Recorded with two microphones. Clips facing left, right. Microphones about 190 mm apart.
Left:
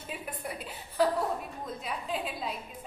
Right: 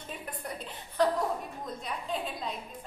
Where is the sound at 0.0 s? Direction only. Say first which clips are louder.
Left 2 dB; 5° left (ahead or behind).